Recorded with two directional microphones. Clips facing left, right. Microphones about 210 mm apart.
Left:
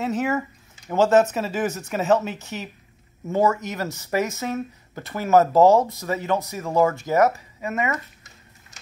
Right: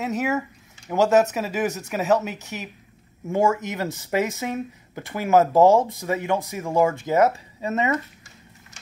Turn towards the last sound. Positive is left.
turn(degrees=-25)  # may be behind; listen again after turning